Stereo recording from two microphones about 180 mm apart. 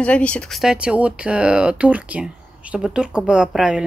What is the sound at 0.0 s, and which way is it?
Speech, 5° left (ahead or behind).